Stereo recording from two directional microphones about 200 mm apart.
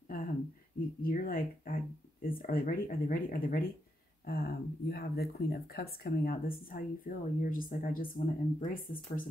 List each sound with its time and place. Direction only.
1.0 s speech: 45° left (ahead or behind)
2.2 s a sound: 45° left (ahead or behind)
4.3 s speech: 50° left (ahead or behind)